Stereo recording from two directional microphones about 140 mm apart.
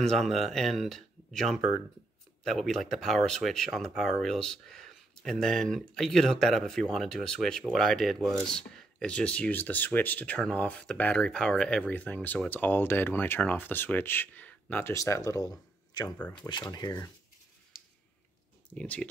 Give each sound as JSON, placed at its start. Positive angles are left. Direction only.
{"t": 0.1, "sound": "speech", "side_deg": 0}
{"t": 16.2, "sound": "speech", "side_deg": 10}
{"t": 16.4, "sound": "speech", "side_deg": 30}
{"t": 18.7, "sound": "speech", "side_deg": 10}